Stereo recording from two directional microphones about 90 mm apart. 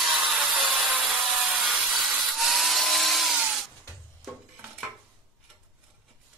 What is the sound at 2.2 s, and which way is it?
Tools, centre (ahead or behind).